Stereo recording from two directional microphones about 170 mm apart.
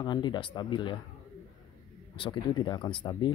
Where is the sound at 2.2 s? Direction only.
25° left (ahead or behind).